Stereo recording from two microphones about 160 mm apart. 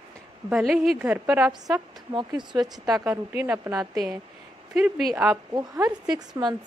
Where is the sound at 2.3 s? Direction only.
30° right (ahead or behind).